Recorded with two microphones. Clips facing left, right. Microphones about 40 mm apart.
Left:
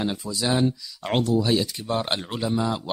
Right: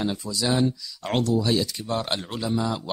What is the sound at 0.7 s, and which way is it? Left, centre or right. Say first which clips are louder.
Speech: left 1 dB; centre.